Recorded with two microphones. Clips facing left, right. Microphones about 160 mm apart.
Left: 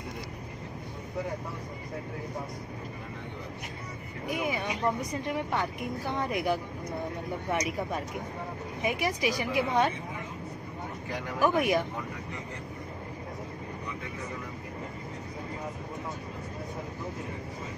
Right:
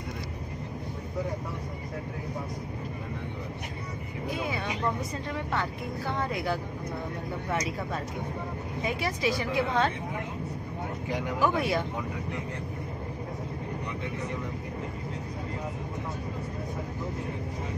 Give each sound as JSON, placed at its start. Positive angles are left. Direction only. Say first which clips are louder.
{"t": 4.3, "sound": "vehicle", "louder": "left 2 dB", "side_deg": 15}
{"t": 5.2, "sound": "a woman's voice", "louder": "left 2 dB", "side_deg": 15}
{"t": 11.3, "sound": "a woman's voice", "louder": "left 2 dB", "side_deg": 15}